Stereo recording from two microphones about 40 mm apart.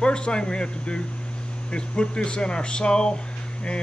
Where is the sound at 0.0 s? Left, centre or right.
Left.